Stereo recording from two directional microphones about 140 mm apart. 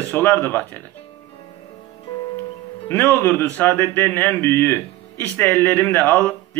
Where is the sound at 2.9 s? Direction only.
15° left (ahead or behind).